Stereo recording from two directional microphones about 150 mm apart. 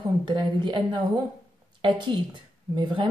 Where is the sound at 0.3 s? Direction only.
30° right (ahead or behind).